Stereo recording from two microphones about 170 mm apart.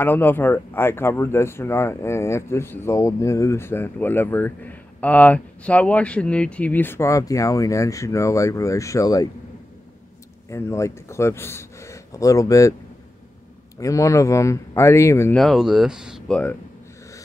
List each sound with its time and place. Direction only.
0.0 s speech: 10° left (ahead or behind)
10.5 s speech: 15° left (ahead or behind)
13.7 s speech: 20° left (ahead or behind)
15.3 s speech: centre (ahead or behind)